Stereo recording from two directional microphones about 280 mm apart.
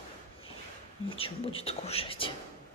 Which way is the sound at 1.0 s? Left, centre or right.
Centre.